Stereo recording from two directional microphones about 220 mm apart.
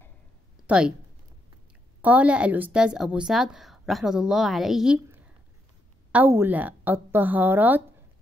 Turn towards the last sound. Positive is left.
turn(degrees=-10)  # may be behind; listen again after turning